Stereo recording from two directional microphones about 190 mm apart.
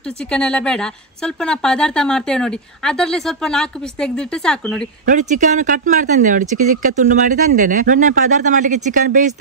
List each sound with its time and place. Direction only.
0.3 s a woman's voice: 5° left (ahead or behind)
5.0 s speech: 40° right (ahead or behind)